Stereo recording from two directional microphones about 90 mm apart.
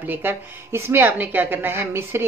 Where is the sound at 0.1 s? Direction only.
25° right (ahead or behind).